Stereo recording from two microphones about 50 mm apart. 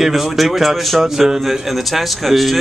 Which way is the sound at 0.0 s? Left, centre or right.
Centre.